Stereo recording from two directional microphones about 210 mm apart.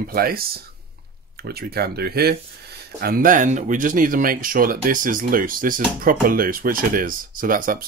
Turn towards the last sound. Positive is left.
turn(degrees=-40)  # may be behind; listen again after turning